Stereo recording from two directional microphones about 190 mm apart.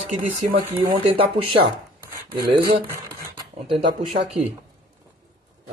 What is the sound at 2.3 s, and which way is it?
Speech, 20° right (ahead or behind).